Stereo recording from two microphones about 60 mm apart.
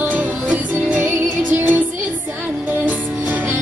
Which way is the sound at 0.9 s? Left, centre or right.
Right.